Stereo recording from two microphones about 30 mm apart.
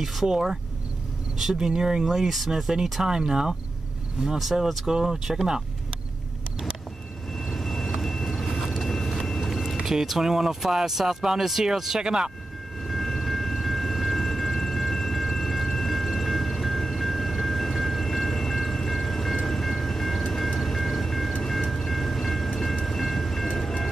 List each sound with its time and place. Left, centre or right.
0.0 s speech: centre
0.3 s speech: centre
2.1 s speech: centre
7.3 s vehicle: centre
8.8 s a sound: centre
9.5 s vehicle: centre
9.8 s speech: centre
12.0 s speech: right
12.8 s train: centre
23.5 s train: centre